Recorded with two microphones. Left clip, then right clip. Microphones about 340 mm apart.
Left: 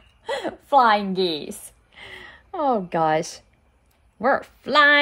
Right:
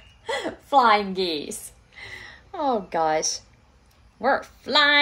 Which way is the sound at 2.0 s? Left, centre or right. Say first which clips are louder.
Right 1 dB; left.